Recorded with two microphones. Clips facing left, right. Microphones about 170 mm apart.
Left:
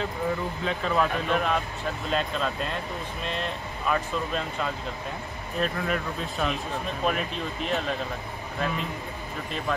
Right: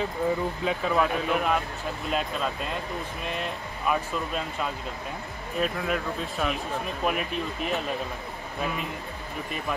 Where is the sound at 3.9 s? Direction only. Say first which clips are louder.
Even; 5° right (ahead or behind).